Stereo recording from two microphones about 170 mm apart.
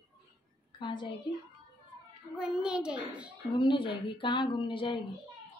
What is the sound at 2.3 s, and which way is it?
A child's voice, 5° right (ahead or behind).